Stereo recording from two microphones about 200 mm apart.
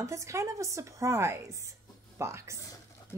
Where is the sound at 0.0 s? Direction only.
15° right (ahead or behind).